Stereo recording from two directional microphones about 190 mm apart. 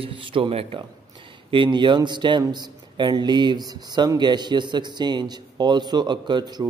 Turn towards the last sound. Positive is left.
turn(degrees=-20)  # may be behind; listen again after turning